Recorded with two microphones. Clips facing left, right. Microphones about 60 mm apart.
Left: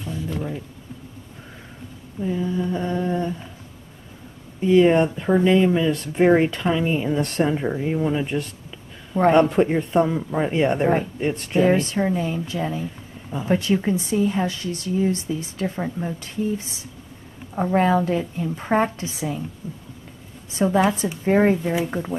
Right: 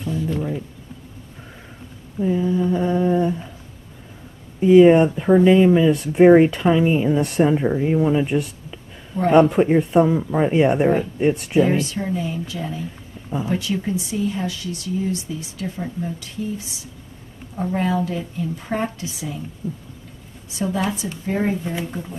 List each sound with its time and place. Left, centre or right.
0.0 s speech: centre
2.1 s speech: centre
4.6 s speech: centre
11.6 s speech: left
19.6 s speech: centre
20.4 s a woman's voice: left